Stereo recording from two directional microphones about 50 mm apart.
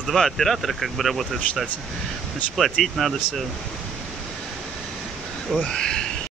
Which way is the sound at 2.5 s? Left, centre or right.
Centre.